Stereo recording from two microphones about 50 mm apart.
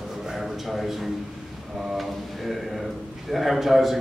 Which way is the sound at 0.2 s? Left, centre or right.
Centre.